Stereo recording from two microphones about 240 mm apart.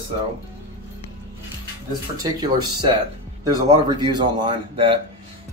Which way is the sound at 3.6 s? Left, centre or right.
Centre.